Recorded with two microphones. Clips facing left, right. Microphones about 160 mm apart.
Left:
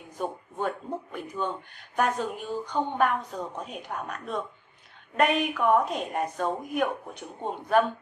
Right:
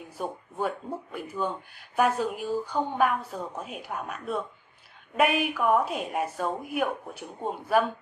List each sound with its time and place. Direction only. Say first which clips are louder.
0.2 s speech: even; 5° right (ahead or behind)